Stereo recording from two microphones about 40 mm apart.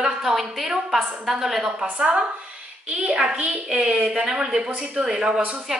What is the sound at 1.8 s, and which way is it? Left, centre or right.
A woman's voice, right.